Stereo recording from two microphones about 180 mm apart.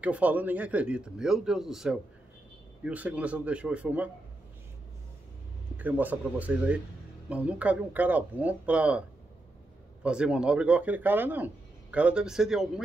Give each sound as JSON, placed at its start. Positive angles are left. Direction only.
{"t": 0.0, "sound": "speech", "side_deg": -10}
{"t": 5.8, "sound": "speech", "side_deg": -10}
{"t": 10.0, "sound": "speech", "side_deg": -5}